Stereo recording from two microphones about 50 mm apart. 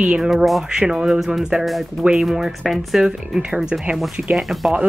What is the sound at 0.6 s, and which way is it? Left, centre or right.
Speech, centre.